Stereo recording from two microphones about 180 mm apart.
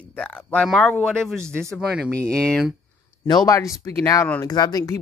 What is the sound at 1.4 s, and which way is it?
Speech, 15° right (ahead or behind).